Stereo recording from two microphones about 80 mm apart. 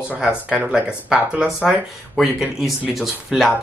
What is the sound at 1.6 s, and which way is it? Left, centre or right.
Speech, centre.